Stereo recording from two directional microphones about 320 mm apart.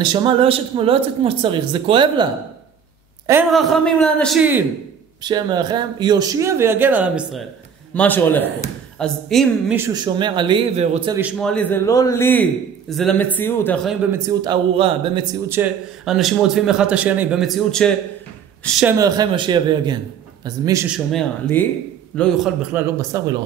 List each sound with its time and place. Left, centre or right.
0.0 s speech: centre
3.3 s a man's voice: centre
10.0 s speech: centre
11.1 s a man's voice: centre
14.1 s a man's voice: centre
21.1 s a man's voice: centre